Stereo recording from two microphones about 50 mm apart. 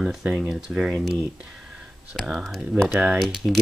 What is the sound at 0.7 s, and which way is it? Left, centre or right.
Speech, right.